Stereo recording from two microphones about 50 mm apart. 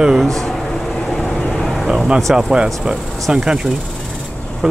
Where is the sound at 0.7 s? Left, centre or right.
Centre.